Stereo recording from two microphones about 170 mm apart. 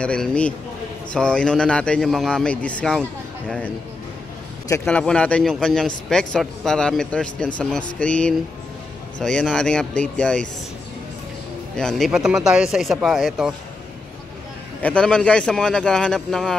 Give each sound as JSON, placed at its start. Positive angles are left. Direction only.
{"t": 0.0, "sound": "a man's voice", "side_deg": 5}
{"t": 4.6, "sound": "speech", "side_deg": 20}
{"t": 4.9, "sound": "a man's voice", "side_deg": 5}
{"t": 11.7, "sound": "a man's voice", "side_deg": 5}
{"t": 14.8, "sound": "a man's voice", "side_deg": 5}